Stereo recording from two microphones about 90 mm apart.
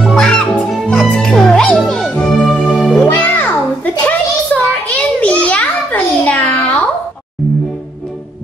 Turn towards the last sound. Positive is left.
turn(degrees=15)  # may be behind; listen again after turning